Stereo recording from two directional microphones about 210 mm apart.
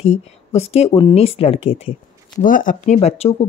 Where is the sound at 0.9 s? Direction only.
20° left (ahead or behind).